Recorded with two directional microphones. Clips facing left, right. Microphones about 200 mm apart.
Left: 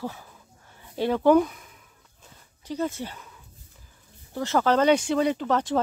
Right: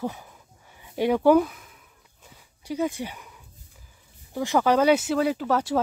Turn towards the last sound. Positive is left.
turn(degrees=-10)  # may be behind; listen again after turning